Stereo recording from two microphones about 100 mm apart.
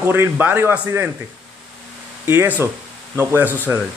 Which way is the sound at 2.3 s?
20° right (ahead or behind).